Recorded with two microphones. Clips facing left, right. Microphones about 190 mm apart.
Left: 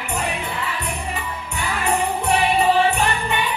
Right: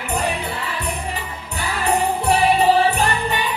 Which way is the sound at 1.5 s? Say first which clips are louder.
Right 2 dB; 35° right (ahead or behind).